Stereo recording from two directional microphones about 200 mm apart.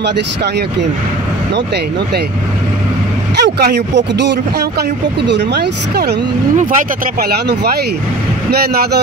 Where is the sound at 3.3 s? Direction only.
50° right (ahead or behind).